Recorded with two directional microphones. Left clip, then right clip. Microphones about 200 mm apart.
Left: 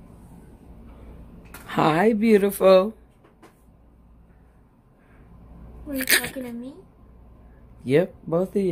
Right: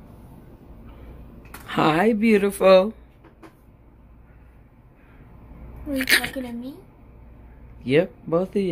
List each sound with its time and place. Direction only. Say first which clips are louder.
1.7 s speech: even; 20° left (ahead or behind)
5.9 s speech: right 2 dB; 15° left (ahead or behind)
7.8 s speech: right 1 dB; 15° left (ahead or behind)